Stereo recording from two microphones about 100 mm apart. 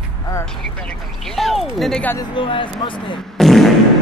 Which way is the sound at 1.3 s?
Centre (ahead or behind).